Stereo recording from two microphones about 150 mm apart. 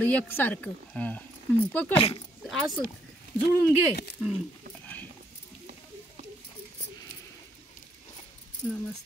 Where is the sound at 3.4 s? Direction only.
90° left.